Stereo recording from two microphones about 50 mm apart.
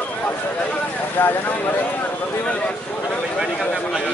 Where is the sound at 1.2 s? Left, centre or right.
Left.